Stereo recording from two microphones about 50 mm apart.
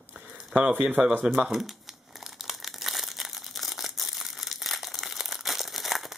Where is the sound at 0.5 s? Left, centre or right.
Right.